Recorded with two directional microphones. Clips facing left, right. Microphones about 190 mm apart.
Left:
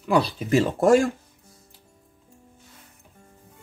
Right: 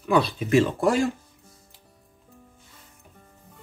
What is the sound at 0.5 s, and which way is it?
Speech, 45° left (ahead or behind).